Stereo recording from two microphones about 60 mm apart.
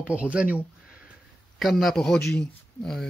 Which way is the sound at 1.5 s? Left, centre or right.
Centre.